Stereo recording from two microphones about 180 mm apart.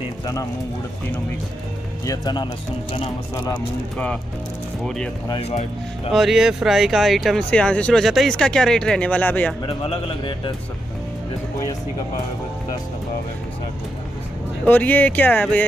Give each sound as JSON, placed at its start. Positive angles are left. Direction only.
{"t": 2.0, "sound": "a man's voice", "side_deg": 25}
{"t": 4.8, "sound": "speech", "side_deg": 5}
{"t": 5.4, "sound": "speech", "side_deg": 35}
{"t": 6.1, "sound": "speech", "side_deg": 0}
{"t": 9.7, "sound": "a man's voice", "side_deg": 30}
{"t": 14.7, "sound": "speech", "side_deg": 10}